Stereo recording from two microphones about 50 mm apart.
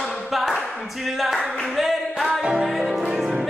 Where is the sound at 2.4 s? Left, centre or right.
Centre.